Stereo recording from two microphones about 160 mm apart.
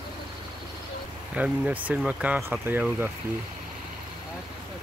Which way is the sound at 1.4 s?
10° right (ahead or behind).